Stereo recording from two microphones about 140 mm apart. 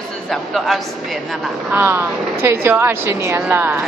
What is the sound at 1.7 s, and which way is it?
Speech, 15° right (ahead or behind).